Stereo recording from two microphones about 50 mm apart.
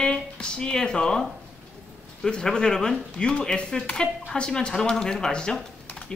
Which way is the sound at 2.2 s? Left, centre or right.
Centre.